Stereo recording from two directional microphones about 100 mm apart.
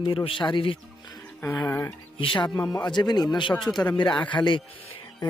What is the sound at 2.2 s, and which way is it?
Speech, 60° left (ahead or behind).